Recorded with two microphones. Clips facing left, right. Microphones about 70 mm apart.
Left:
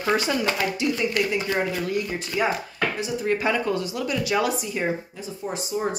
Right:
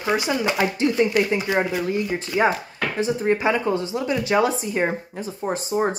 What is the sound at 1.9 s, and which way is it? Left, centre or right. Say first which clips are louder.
Speech: right 3 dB; right.